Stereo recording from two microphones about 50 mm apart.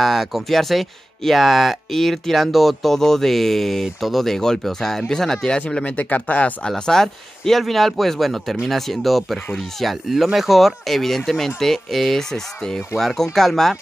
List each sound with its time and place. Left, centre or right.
0.0 s speech: centre
5.7 s speech: left
6.7 s speech: centre